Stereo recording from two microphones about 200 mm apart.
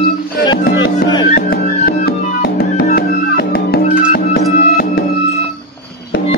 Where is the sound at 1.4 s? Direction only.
50° left (ahead or behind).